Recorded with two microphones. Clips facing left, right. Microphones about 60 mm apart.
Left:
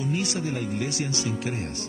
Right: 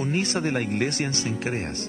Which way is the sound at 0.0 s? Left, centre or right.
Right.